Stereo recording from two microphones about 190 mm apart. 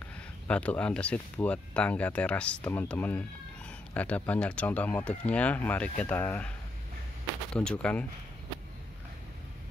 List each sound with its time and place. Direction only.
0.5 s speech: 5° left (ahead or behind)
7.5 s speech: 5° left (ahead or behind)